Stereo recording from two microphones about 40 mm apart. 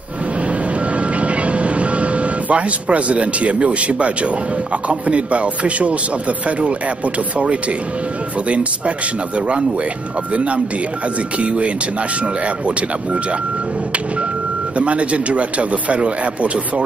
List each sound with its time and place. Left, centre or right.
0.5 s vehicle: right
4.8 s speech: right
8.5 s speech: right
10.3 s speech: right
14.8 s speech: right